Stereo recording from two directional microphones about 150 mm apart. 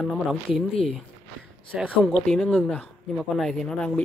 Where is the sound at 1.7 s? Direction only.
5° right (ahead or behind).